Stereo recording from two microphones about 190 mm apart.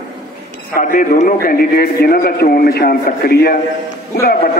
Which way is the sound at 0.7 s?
45° left (ahead or behind).